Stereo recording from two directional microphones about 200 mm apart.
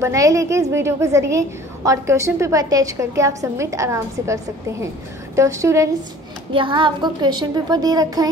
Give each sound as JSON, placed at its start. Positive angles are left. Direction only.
{"t": 0.0, "sound": "a woman's voice", "side_deg": -15}